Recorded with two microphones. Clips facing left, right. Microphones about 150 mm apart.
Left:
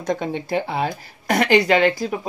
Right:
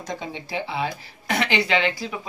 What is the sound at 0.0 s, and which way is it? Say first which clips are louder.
Speech: left 8 dB; 55° left (ahead or behind).